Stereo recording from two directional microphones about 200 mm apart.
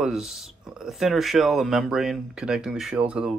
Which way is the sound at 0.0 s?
Centre (ahead or behind).